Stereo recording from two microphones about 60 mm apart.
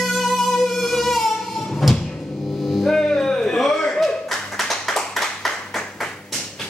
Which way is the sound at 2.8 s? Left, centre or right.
Centre.